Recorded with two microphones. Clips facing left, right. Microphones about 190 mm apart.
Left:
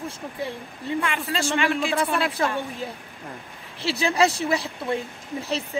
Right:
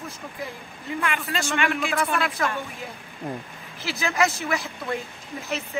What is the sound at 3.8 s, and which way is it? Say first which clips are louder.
A woman's voice: left 3 dB; 30° left (ahead or behind).